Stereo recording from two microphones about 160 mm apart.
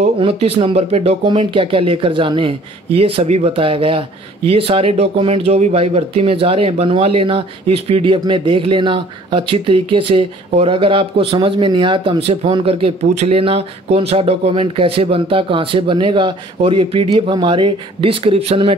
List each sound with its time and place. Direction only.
0.0 s speech: 35° right (ahead or behind)